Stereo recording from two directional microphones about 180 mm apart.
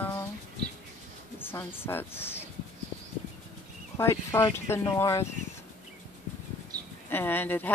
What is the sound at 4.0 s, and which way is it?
Speech, 15° left (ahead or behind).